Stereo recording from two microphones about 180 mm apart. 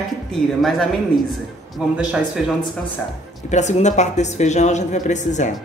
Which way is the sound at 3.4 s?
40° left (ahead or behind).